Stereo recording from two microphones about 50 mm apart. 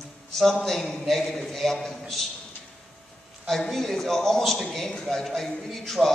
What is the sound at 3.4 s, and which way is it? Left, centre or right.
A man's voice, centre.